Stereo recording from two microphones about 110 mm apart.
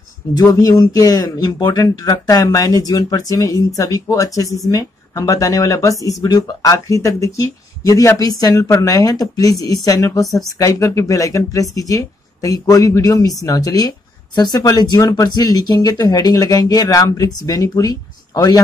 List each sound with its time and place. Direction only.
0.4 s speech: 35° left (ahead or behind)
10.2 s speech: centre (ahead or behind)
10.6 s speech: 30° left (ahead or behind)